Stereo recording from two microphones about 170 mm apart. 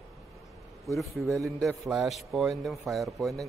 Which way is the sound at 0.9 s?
Centre (ahead or behind).